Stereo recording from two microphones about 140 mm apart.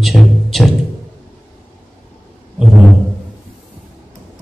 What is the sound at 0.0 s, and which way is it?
Music, centre (ahead or behind).